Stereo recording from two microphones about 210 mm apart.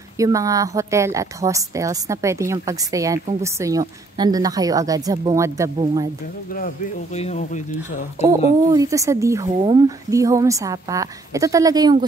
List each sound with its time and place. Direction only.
0.2 s a woman's voice: 15° right (ahead or behind)
7.2 s speech: 30° left (ahead or behind)
8.7 s a woman's voice: 15° right (ahead or behind)